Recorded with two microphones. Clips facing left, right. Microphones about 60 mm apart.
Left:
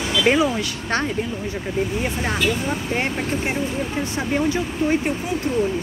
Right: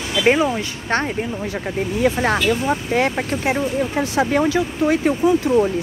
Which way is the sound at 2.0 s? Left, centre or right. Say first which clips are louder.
Right 7 dB; right.